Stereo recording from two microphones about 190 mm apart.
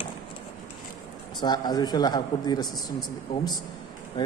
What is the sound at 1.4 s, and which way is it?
A man's voice, 20° left (ahead or behind).